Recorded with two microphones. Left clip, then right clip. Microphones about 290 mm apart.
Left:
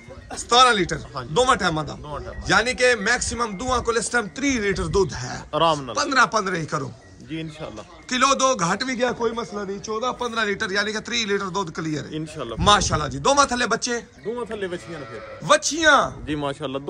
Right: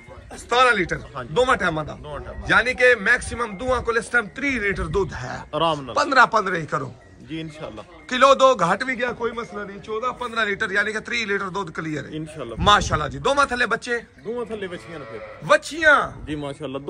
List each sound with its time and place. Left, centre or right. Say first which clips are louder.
0.5 s a man's voice: left 1 dB; centre
14.6 s a man's voice: left 3 dB; left
15.4 s a man's voice: right 1 dB; centre
16.3 s speech: left 4 dB; left